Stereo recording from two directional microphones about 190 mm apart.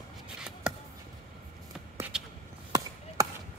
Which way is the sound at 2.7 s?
15° right (ahead or behind).